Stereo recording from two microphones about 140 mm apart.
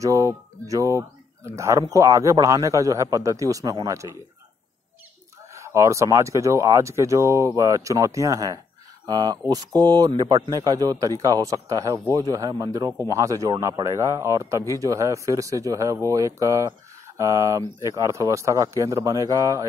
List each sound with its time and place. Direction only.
0.0 s speech: 20° right (ahead or behind)
5.5 s speech: 20° right (ahead or behind)